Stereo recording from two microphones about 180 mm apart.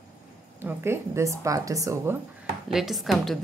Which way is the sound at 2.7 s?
Centre (ahead or behind).